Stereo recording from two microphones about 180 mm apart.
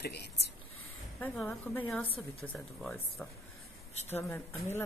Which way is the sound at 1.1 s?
5° left (ahead or behind).